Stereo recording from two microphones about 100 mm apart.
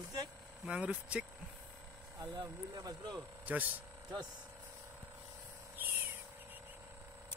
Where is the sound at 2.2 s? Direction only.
35° right (ahead or behind).